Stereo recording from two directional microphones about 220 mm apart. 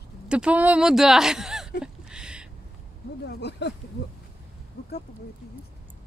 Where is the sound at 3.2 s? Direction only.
50° left (ahead or behind).